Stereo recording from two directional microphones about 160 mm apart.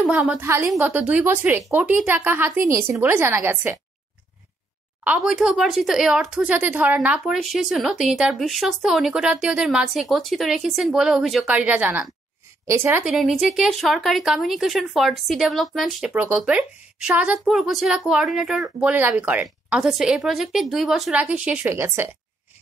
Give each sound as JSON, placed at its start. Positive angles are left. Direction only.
{"t": 0.1, "sound": "a woman's voice", "side_deg": -10}
{"t": 5.0, "sound": "a woman's voice", "side_deg": -5}
{"t": 13.0, "sound": "speech", "side_deg": 0}